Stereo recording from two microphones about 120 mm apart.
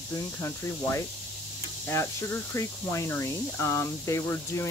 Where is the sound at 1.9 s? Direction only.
25° left (ahead or behind).